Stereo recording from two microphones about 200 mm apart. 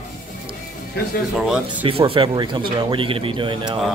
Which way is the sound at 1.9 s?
25° right (ahead or behind).